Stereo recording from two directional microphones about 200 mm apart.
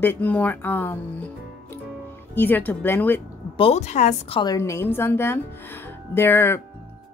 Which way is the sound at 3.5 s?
30° left (ahead or behind).